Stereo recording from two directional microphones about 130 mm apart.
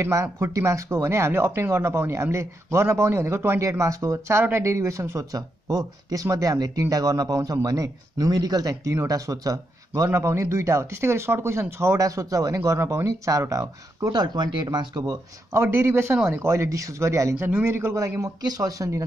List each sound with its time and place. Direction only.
0.0 s speech: 20° right (ahead or behind)